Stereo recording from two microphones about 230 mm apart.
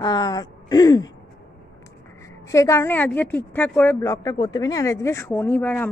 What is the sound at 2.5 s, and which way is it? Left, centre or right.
A woman's voice, centre.